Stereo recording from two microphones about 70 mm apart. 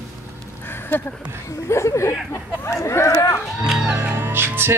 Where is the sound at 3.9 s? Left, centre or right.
Right.